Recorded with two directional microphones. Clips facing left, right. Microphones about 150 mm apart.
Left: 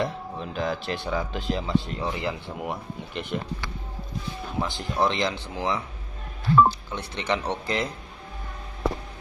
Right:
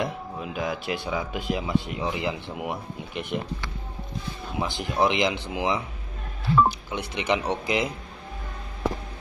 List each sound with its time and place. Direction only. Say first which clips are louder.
0.0 s speech: left 1 dB; 10° right (ahead or behind)
4.6 s speech: right 1 dB; 15° right (ahead or behind)
6.9 s speech: right 2 dB; 15° right (ahead or behind)